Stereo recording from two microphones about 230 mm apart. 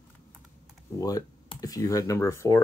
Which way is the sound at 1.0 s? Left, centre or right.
Centre.